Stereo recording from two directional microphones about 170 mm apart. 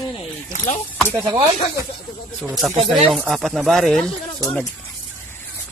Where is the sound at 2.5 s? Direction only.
Centre (ahead or behind).